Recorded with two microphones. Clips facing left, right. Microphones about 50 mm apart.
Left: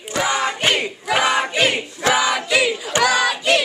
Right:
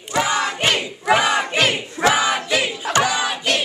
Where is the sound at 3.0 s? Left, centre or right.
Left.